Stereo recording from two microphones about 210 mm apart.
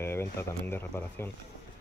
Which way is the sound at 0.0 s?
10° left (ahead or behind).